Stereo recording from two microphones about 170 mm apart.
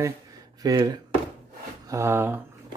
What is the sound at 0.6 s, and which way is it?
Speech, 20° right (ahead or behind).